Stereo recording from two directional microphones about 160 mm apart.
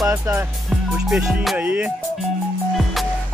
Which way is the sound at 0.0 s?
15° right (ahead or behind).